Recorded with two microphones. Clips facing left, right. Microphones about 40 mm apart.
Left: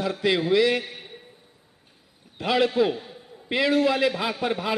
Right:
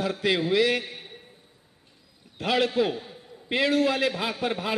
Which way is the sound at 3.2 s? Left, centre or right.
Centre.